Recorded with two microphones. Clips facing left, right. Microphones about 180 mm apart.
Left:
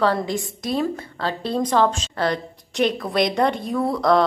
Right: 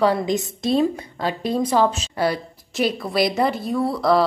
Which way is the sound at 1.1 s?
15° right (ahead or behind).